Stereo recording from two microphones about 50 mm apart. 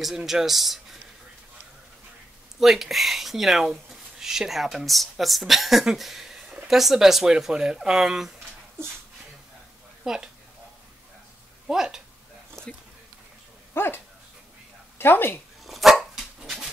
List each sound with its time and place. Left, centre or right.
0.0 s a man's voice: centre
2.6 s speech: centre
10.0 s speech: centre
11.6 s speech: centre
12.6 s a sound: centre
13.7 s speech: left
15.6 s dog: centre